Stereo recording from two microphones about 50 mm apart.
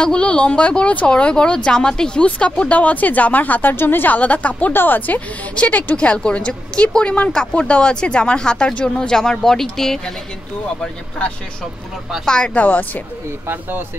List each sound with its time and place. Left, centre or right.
0.0 s a woman's voice: centre; by 3.7 s left
3.7 s a woman's voice: left
4.1 s a woman's voice: left
4.7 s a woman's voice: left; by 10.1 s centre
12.3 s a woman's voice: left
13.5 s speech: right